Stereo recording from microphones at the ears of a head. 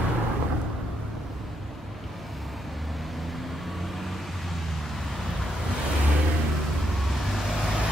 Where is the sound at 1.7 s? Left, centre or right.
Centre.